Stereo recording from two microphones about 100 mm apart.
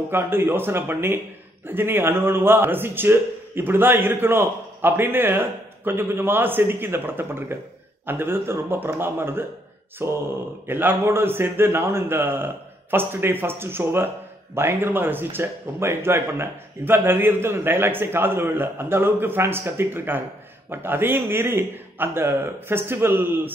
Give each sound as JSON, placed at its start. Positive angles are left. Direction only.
{"t": 0.1, "sound": "speech", "side_deg": -25}